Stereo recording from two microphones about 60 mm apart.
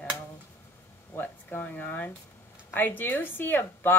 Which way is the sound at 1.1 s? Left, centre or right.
Left.